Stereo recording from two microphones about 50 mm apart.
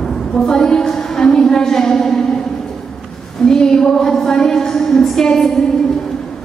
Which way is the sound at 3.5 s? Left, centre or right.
Centre.